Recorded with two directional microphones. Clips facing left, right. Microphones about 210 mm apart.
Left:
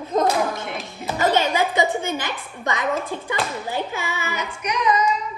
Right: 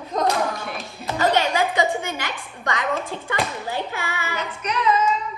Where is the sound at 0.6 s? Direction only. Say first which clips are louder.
Left 2 dB; 20° left (ahead or behind).